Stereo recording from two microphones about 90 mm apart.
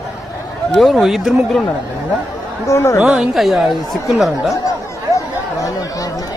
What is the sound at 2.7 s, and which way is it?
Speech, 35° left (ahead or behind).